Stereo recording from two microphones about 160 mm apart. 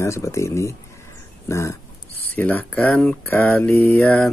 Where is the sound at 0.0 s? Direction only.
15° left (ahead or behind).